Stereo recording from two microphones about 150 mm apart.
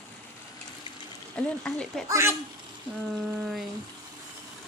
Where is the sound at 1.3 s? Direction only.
5° left (ahead or behind).